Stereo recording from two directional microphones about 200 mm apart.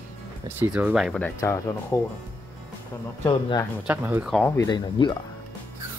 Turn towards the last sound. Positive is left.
turn(degrees=20)  # may be behind; listen again after turning